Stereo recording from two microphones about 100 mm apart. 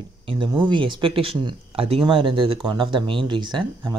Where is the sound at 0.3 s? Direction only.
55° right (ahead or behind).